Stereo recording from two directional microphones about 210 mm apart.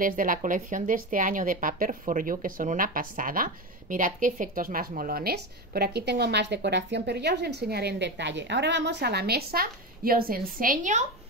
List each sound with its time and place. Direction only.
0.0 s speech: 40° right (ahead or behind)